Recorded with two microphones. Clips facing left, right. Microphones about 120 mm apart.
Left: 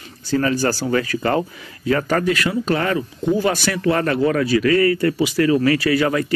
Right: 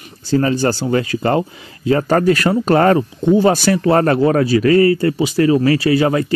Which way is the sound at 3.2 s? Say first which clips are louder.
Right 6 dB; 30° right (ahead or behind).